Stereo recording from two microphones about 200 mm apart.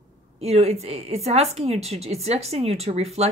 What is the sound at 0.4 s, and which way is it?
Speech, 30° right (ahead or behind).